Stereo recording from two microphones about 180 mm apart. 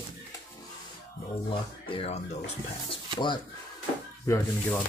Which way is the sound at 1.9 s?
35° left (ahead or behind).